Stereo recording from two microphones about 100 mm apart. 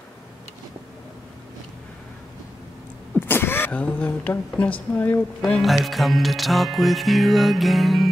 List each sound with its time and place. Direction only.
3.2 s speech: 20° left (ahead or behind)
5.4 s music: centre (ahead or behind)